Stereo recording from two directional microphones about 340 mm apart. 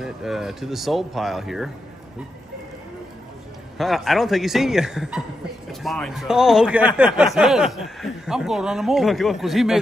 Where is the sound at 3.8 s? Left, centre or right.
Centre.